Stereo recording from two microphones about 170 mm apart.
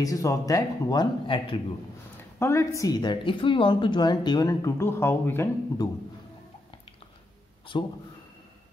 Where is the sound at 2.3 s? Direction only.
15° left (ahead or behind).